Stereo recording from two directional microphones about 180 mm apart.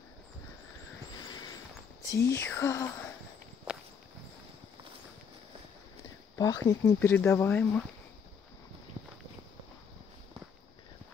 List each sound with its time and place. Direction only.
1.1 s a sound: 25° left (ahead or behind)
2.0 s speech: 15° left (ahead or behind)
6.3 s speech: 20° left (ahead or behind)